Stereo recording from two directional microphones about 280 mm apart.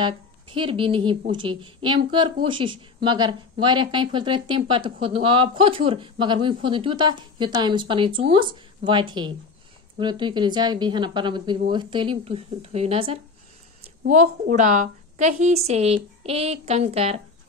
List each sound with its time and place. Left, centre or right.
0.0 s a woman's voice: centre